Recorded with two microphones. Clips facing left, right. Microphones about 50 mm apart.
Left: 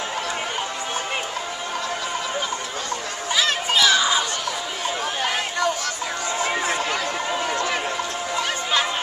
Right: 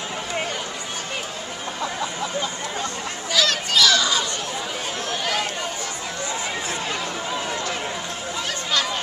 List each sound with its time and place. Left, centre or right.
3.3 s children playing: left